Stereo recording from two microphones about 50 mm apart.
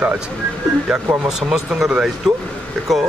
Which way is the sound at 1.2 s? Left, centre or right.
Centre.